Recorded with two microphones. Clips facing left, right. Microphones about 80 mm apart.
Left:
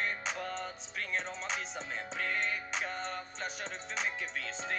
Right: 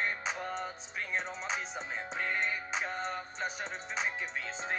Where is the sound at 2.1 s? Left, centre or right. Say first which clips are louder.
Right 1 dB; centre.